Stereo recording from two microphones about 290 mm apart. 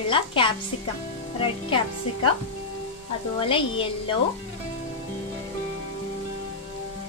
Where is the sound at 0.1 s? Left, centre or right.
Centre.